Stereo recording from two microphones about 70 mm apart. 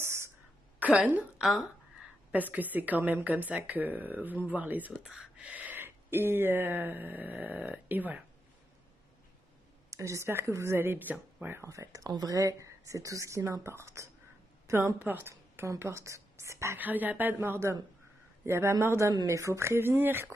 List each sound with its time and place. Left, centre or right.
0.0 s a sound: right
0.8 s a woman's voice: right
2.3 s speech: right
5.0 s speech: centre
5.4 s speech: right
9.8 s speech: right
11.7 s speech: right
12.1 s a woman's voice: right
16.7 s speech: right
18.4 s speech: right